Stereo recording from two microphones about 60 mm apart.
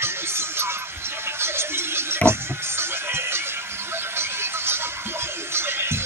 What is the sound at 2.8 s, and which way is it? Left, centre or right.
Music, right.